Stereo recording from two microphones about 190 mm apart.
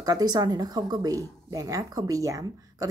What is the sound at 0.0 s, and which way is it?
Speech, 20° right (ahead or behind).